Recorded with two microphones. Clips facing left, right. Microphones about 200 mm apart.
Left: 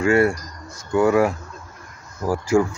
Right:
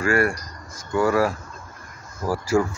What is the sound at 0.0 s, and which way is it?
Speech, 25° left (ahead or behind).